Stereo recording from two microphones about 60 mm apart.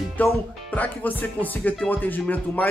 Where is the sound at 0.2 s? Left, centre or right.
Left.